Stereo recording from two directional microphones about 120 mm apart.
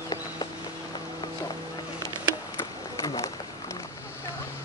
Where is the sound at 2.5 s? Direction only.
25° left (ahead or behind).